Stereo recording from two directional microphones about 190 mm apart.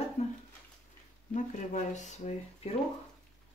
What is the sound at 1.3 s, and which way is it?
Speech, 40° left (ahead or behind).